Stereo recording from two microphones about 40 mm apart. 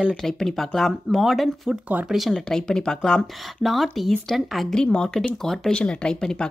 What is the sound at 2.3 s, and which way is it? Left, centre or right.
Speech, centre.